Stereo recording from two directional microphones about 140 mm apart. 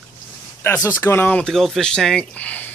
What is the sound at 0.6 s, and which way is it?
Speech, 15° left (ahead or behind).